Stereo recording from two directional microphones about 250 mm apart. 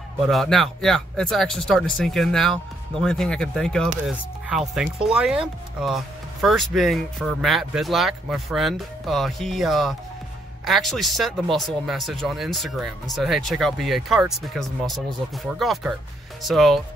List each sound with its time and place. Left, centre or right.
0.3 s speech: centre